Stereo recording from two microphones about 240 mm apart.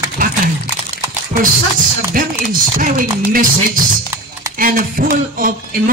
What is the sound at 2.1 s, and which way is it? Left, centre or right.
A man's voice, right.